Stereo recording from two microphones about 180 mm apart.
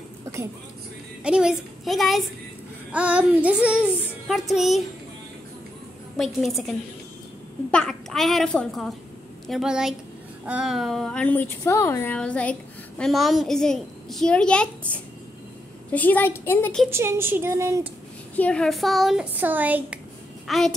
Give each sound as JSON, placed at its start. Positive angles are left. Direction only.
{"t": 1.2, "sound": "a woman's voice", "side_deg": -5}
{"t": 2.9, "sound": "child singing", "side_deg": -5}
{"t": 4.0, "sound": "a woman's voice", "side_deg": 0}
{"t": 6.1, "sound": "a woman's voice", "side_deg": 0}
{"t": 7.7, "sound": "a woman's voice", "side_deg": 0}
{"t": 16.9, "sound": "child singing", "side_deg": -15}
{"t": 18.3, "sound": "a woman's voice", "side_deg": 5}